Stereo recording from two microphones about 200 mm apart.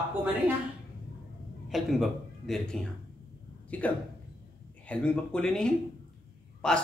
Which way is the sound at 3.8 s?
5° left (ahead or behind).